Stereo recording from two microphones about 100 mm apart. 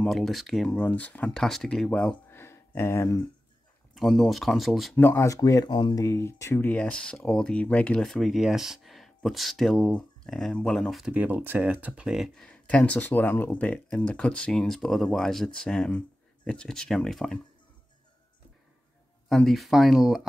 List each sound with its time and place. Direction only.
0.0 s speech: centre (ahead or behind)
2.2 s a sound: 25° left (ahead or behind)
3.9 s speech: centre (ahead or behind)
4.9 s speech: 25° left (ahead or behind); by 6.0 s 45° left (ahead or behind)
6.0 s speech: 30° left (ahead or behind)
6.7 s speech: 10° left (ahead or behind)
11.1 s speech: 15° right (ahead or behind)
12.4 s speech: 10° left (ahead or behind)
19.2 s speech: 5° left (ahead or behind)